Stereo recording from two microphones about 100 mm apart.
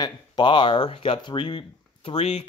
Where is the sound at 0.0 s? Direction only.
50° left (ahead or behind).